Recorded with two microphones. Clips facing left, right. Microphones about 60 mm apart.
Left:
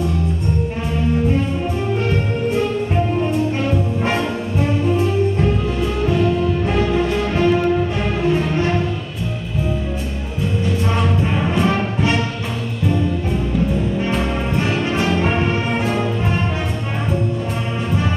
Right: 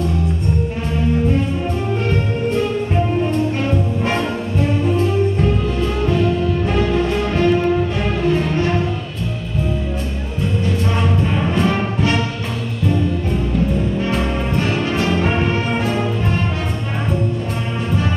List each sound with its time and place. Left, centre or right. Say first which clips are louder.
6.6 s music: even; centre
11.6 s music: even; centre
14.6 s brass instrument: even; centre
15.2 s music: even; centre